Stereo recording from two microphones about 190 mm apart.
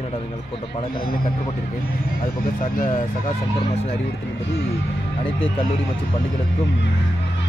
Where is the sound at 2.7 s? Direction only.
45° left (ahead or behind).